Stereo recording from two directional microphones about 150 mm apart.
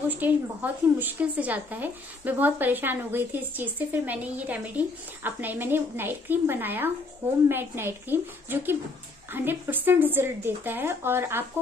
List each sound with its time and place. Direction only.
0.1 s a woman's voice: 10° right (ahead or behind)